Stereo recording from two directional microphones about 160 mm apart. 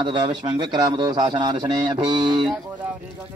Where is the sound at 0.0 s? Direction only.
30° right (ahead or behind).